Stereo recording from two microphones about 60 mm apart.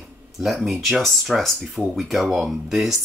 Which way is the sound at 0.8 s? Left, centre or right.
Centre.